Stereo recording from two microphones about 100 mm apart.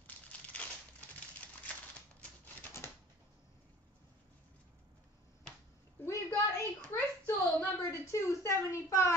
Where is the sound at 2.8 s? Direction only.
25° left (ahead or behind).